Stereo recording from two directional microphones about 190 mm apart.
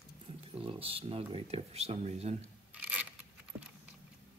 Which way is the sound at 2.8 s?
5° right (ahead or behind).